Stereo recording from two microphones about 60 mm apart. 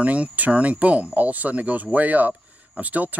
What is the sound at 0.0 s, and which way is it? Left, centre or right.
Speech, right.